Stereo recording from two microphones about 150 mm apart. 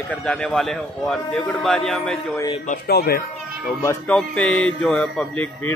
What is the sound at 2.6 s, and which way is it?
Speech, 90° left.